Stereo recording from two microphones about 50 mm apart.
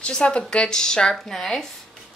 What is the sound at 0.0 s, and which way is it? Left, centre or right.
Speech, centre.